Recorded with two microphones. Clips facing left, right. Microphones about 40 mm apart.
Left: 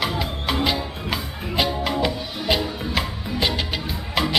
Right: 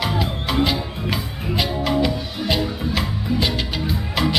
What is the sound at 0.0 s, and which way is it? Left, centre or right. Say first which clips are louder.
Music: right 1 dB; centre.